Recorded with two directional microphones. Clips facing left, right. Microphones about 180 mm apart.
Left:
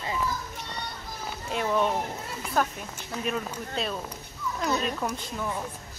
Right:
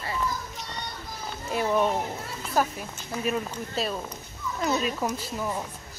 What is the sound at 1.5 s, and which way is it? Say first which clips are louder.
A woman's voice: right 2 dB; 10° right (ahead or behind).